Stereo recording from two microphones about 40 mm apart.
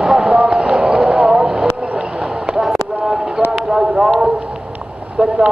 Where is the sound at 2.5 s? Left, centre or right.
Centre.